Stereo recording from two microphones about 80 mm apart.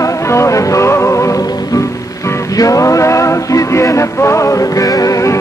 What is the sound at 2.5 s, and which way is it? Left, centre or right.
Music, left.